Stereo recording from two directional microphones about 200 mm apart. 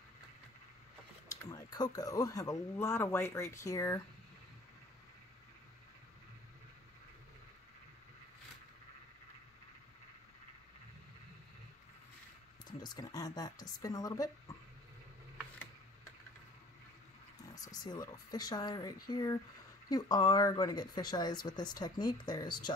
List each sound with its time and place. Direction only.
1.3 s speech: 20° left (ahead or behind)
12.6 s a sound: 20° left (ahead or behind)
13.7 s speech: 20° left (ahead or behind)
17.6 s speech: 20° left (ahead or behind)